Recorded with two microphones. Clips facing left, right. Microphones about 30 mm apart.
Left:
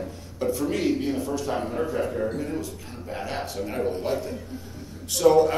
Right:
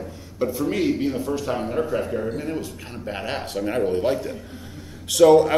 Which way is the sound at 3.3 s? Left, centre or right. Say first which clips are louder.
Right 5 dB; right.